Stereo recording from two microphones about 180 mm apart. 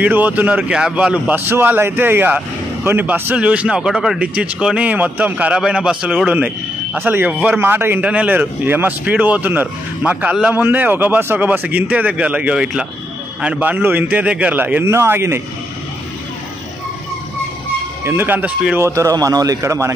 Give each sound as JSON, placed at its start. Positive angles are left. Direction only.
{"t": 0.0, "sound": "a man's voice", "side_deg": -10}
{"t": 18.0, "sound": "a man's voice", "side_deg": -10}